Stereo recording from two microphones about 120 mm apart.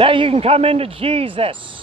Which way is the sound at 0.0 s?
45° right (ahead or behind).